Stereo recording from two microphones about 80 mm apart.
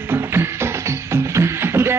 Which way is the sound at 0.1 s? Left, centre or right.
Right.